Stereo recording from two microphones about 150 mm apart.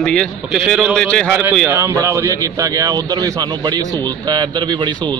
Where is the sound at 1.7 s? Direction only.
20° right (ahead or behind).